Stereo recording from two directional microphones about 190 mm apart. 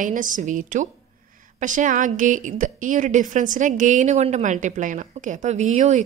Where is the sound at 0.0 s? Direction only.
45° right (ahead or behind).